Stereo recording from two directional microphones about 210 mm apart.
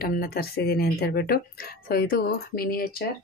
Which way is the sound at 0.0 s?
45° left (ahead or behind).